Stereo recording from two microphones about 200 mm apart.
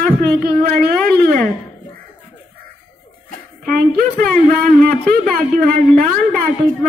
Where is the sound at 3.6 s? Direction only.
45° right (ahead or behind).